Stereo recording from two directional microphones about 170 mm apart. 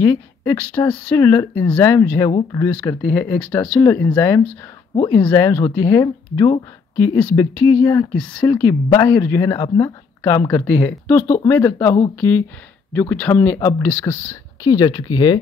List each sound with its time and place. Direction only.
0.0 s speech: 15° left (ahead or behind)
4.9 s speech: 30° left (ahead or behind)
5.2 s speech: 15° left (ahead or behind)
7.0 s speech: 10° left (ahead or behind)
7.6 s speech: 20° left (ahead or behind)
8.2 s speech: 5° left (ahead or behind)
8.8 s speech: 25° left (ahead or behind)